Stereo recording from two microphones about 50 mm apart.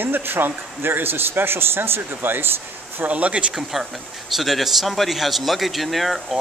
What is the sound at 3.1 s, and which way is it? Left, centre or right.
Speech, right.